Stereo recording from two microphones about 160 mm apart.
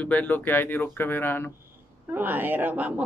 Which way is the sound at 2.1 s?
10° right (ahead or behind).